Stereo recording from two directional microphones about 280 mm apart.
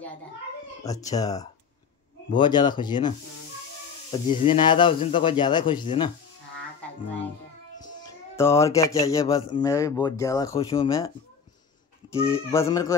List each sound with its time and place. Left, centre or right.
0.8 s speech: centre
7.8 s speech: centre
12.3 s speech: centre